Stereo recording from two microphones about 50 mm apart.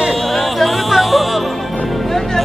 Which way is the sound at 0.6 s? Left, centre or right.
Centre.